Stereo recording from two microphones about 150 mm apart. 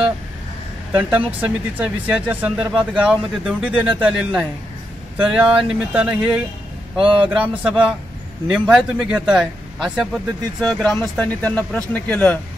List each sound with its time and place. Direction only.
0.9 s speech: 10° right (ahead or behind)
7.0 s a man's voice: 35° right (ahead or behind)
7.2 s speech: 10° right (ahead or behind)
10.6 s speech: 5° left (ahead or behind)